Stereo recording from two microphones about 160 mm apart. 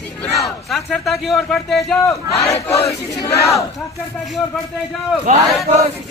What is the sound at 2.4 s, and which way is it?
Battle cry, 40° left (ahead or behind).